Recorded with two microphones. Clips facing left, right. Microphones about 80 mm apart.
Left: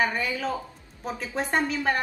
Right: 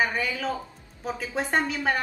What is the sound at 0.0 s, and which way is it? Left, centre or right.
A woman's voice, centre.